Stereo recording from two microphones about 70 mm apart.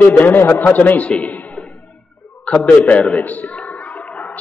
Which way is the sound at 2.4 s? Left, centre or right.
Centre.